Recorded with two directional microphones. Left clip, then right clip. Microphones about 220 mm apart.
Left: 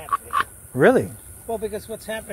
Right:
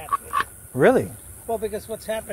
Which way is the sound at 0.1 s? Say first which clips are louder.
Left 1 dB; 15° left (ahead or behind).